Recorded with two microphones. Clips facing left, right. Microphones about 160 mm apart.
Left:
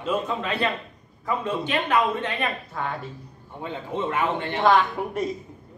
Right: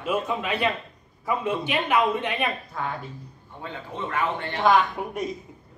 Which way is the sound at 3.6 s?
15° left (ahead or behind).